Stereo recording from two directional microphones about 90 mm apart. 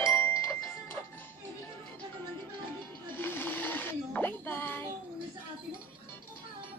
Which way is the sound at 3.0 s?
25° left (ahead or behind).